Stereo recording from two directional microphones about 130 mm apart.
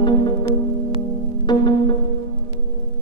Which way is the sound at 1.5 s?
35° left (ahead or behind).